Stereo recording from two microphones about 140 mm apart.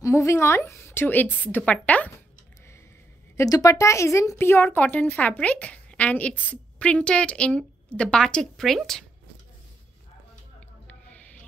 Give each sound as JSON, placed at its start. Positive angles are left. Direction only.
{"t": 0.0, "sound": "a woman's voice", "side_deg": 20}
{"t": 3.3, "sound": "a woman's voice", "side_deg": 25}